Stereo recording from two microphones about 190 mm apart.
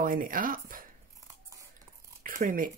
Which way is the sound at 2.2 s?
45° right (ahead or behind).